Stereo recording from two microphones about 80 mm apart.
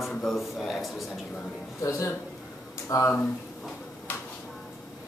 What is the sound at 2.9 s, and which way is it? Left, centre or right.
Speech, left.